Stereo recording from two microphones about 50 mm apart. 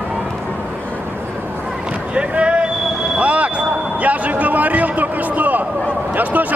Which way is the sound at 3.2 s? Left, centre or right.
Right.